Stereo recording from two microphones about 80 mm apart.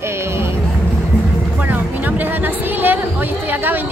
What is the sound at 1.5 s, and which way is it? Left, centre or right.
Speech, right.